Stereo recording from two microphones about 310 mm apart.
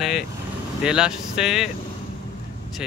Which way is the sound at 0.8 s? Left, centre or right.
Centre.